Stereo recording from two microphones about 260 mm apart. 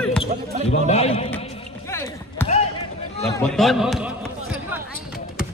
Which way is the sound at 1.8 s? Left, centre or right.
Centre.